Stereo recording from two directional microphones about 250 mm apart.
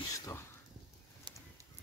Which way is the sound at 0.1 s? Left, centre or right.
Centre.